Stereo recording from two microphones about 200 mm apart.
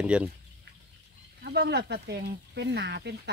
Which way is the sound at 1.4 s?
55° right (ahead or behind).